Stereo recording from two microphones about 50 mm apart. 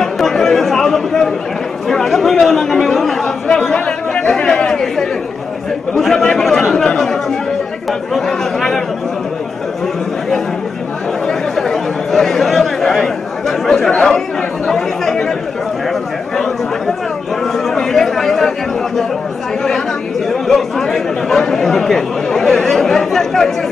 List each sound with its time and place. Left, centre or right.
0.0 s chatter: centre
1.9 s speech: centre
3.6 s chatter: centre
5.9 s speech: centre
8.1 s speech: centre
11.5 s chatter: centre
17.6 s chatter: centre
20.2 s speech: centre